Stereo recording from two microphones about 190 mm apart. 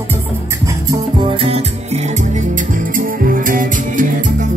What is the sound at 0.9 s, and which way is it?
Music, 25° right (ahead or behind).